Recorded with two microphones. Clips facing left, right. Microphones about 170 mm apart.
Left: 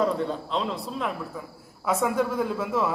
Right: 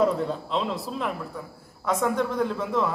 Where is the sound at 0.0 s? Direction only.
Centre (ahead or behind).